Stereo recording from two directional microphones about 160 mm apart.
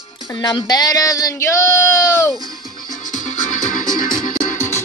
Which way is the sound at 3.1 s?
50° left (ahead or behind).